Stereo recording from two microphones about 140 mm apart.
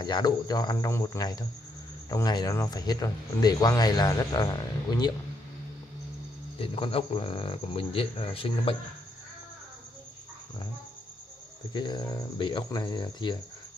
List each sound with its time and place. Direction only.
0.0 s speech: 30° left (ahead or behind)
6.6 s speech: 40° left (ahead or behind)
11.7 s speech: 30° left (ahead or behind)